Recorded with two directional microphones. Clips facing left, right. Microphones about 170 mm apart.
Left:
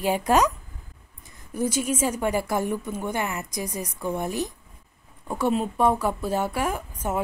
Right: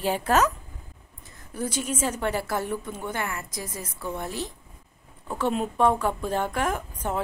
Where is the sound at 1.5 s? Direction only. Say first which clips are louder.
Left 4 dB; 10° left (ahead or behind).